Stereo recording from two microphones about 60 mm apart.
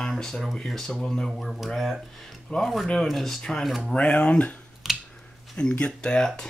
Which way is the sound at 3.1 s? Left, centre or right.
Centre.